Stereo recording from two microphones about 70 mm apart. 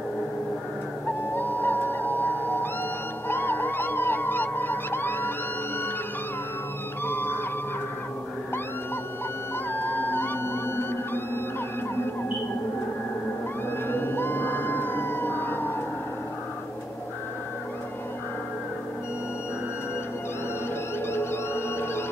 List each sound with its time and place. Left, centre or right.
1.0 s owl: left
3.3 s police car: left
7.1 s music: left
9.7 s theremin: left
13.7 s fire engine: left
21.1 s music: left